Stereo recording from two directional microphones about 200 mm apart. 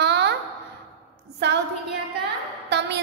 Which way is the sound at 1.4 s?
60° right (ahead or behind).